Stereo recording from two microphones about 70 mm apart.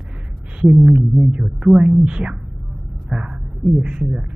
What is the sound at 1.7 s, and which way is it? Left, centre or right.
Speech, centre.